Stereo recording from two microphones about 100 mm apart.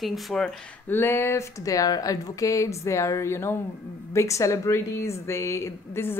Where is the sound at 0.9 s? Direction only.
25° left (ahead or behind).